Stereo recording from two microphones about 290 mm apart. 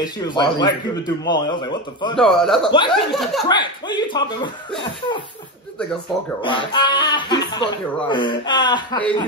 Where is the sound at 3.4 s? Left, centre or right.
Centre.